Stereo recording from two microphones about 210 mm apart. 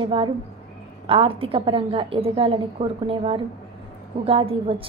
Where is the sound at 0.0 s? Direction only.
25° right (ahead or behind).